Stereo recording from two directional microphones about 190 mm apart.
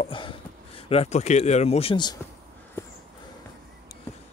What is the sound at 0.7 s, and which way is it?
Speech, 30° left (ahead or behind).